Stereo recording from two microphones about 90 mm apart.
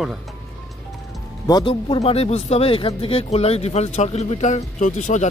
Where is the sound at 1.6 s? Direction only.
80° left.